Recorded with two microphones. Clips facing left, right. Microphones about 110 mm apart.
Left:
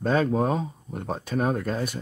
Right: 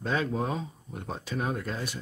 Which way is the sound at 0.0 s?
45° left (ahead or behind).